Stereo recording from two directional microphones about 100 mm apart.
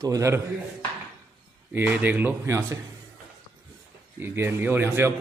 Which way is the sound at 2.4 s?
30° right (ahead or behind).